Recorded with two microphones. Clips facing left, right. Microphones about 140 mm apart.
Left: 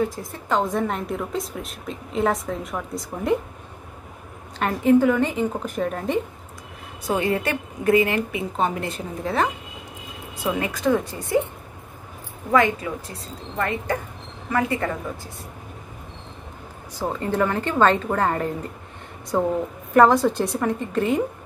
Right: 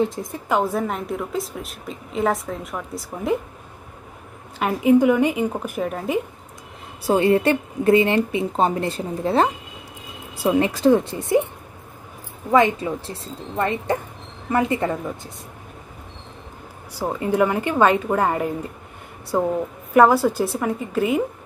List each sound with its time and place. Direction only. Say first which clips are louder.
0.5 s a woman's voice: right 1 dB; 5° right (ahead or behind)
4.6 s a woman's voice: right 1 dB; 10° right (ahead or behind)
7.1 s a woman's voice: right 6 dB; 30° right (ahead or behind)
12.4 s speech: right 2 dB; 25° right (ahead or behind)
17.0 s a woman's voice: right 3 dB; 10° right (ahead or behind)